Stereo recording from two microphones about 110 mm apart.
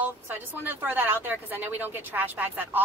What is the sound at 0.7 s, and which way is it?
A woman's voice, 15° right (ahead or behind).